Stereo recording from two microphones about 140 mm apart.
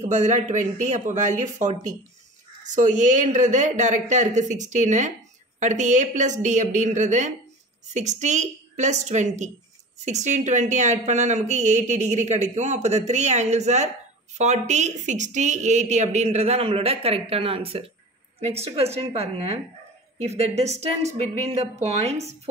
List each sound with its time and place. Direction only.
0.0 s a woman's voice: 60° right (ahead or behind)